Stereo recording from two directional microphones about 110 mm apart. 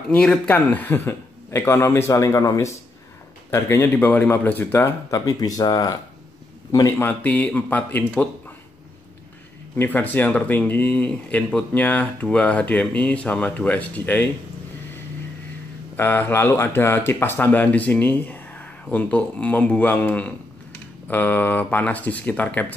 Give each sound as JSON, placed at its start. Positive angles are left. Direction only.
{"t": 0.1, "sound": "a man's voice", "side_deg": 10}
{"t": 5.2, "sound": "speech", "side_deg": 35}
{"t": 7.1, "sound": "speech", "side_deg": 15}
{"t": 9.8, "sound": "speech", "side_deg": 15}
{"t": 16.0, "sound": "speech", "side_deg": 20}